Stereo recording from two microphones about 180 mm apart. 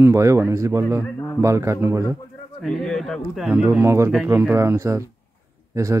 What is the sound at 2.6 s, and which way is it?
A man's voice, centre (ahead or behind).